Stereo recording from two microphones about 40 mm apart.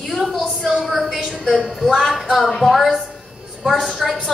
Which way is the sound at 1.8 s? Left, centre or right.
Centre.